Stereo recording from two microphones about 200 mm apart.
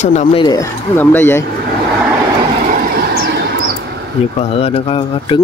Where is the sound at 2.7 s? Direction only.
50° right (ahead or behind).